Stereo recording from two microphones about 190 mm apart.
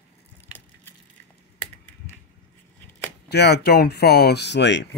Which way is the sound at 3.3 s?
60° left (ahead or behind).